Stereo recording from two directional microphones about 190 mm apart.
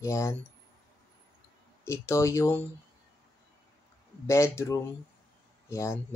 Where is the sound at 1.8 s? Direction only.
15° left (ahead or behind).